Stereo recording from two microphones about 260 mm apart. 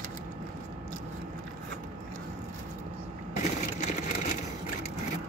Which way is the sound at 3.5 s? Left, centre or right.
Left.